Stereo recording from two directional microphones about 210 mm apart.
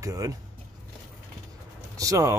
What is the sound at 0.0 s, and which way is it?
Speech, 15° right (ahead or behind).